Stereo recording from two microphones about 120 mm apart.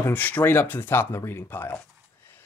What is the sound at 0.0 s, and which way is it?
Speech, 15° left (ahead or behind).